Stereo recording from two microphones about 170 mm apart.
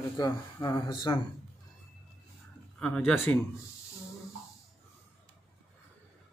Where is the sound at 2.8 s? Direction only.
5° left (ahead or behind).